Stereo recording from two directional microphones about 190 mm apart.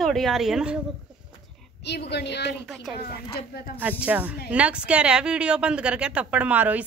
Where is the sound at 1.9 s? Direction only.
60° left (ahead or behind).